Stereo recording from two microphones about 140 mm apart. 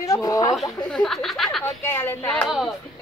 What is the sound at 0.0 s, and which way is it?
Speech, 25° left (ahead or behind).